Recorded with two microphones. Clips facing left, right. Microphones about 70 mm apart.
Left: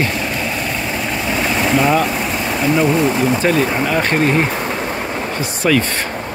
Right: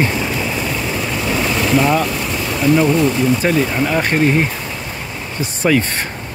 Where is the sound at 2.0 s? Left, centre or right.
Centre.